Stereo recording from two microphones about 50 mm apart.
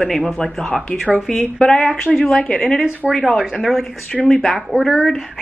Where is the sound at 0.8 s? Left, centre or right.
Left.